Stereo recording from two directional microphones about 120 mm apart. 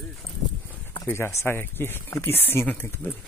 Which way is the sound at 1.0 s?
20° left (ahead or behind).